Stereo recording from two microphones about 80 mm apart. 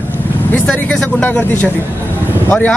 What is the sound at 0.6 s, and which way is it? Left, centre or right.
Speech, centre.